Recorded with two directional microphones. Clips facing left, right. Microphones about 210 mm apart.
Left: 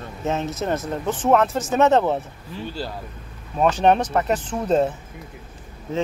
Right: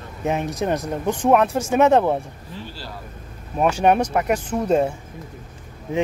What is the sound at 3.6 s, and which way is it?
Speech, 10° right (ahead or behind).